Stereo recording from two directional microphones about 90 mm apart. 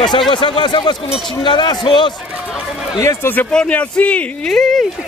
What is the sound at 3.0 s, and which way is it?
Speech, 35° left (ahead or behind).